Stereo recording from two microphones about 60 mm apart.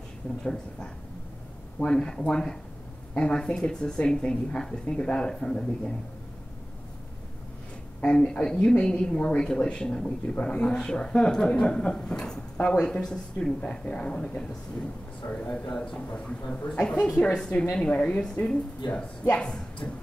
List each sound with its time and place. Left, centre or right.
0.4 s speech: centre
8.0 s speech: centre
15.2 s speech: left
15.7 s speech: centre